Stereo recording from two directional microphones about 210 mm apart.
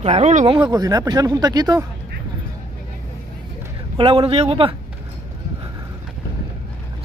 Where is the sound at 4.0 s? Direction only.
25° right (ahead or behind).